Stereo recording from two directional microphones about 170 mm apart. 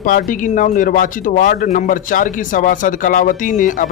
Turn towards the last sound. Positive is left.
turn(degrees=50)  # may be behind; listen again after turning